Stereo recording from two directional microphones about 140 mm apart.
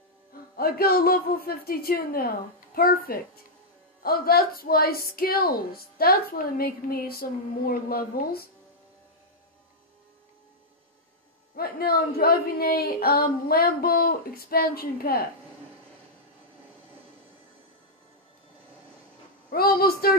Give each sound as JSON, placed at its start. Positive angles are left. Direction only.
{"t": 0.3, "sound": "a woman's voice", "side_deg": 90}
{"t": 11.5, "sound": "a woman's voice", "side_deg": 90}
{"t": 19.5, "sound": "a woman's voice", "side_deg": 90}